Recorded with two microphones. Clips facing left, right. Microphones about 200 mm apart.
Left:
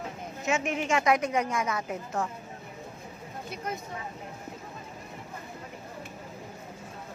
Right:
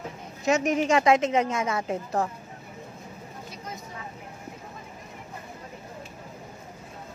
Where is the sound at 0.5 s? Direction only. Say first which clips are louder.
Right 6 dB; 40° right (ahead or behind).